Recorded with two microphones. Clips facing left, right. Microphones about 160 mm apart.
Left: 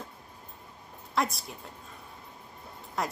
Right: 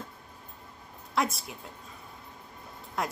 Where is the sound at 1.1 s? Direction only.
Centre (ahead or behind).